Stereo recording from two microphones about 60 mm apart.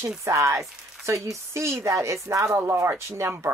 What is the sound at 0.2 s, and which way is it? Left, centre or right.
Speech, right.